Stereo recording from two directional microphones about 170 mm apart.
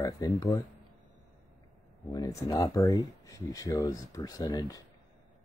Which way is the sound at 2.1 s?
20° left (ahead or behind).